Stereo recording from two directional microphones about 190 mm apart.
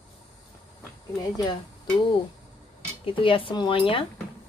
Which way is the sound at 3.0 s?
30° left (ahead or behind).